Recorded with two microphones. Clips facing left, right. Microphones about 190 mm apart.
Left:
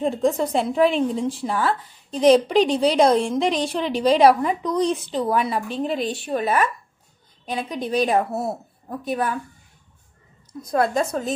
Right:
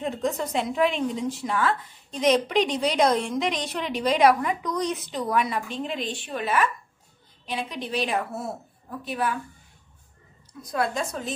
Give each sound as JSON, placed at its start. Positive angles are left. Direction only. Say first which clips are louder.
{"t": 0.0, "sound": "a woman's voice", "louder": "left 6 dB", "side_deg": 30}
{"t": 10.7, "sound": "a woman's voice", "louder": "left 6 dB", "side_deg": 45}